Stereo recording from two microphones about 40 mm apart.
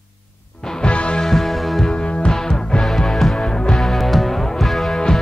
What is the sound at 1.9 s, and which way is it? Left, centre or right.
Music, left.